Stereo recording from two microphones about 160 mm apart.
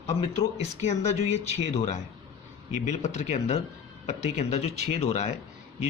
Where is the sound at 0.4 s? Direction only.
40° left (ahead or behind).